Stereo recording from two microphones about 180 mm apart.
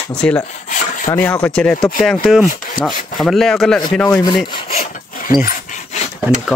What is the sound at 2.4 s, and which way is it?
Rub, 50° left (ahead or behind).